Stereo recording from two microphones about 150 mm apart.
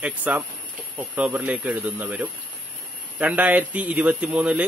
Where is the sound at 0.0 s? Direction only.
10° right (ahead or behind).